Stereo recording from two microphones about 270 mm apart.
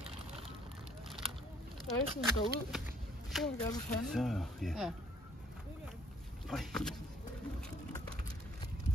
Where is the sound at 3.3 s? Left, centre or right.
Centre.